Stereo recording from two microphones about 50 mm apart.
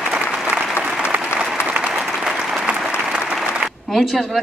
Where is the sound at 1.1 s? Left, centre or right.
Right.